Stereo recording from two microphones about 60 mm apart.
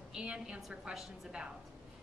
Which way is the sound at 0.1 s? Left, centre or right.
Centre.